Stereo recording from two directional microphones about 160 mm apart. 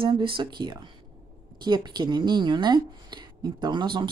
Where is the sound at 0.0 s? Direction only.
30° right (ahead or behind).